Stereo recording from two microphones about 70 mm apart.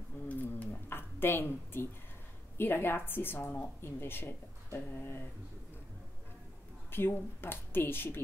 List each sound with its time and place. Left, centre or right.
0.3 s a sound: left
2.5 s speech: left
6.9 s speech: left